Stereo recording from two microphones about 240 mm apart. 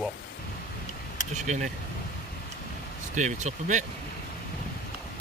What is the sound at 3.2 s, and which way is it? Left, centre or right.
Speech, right.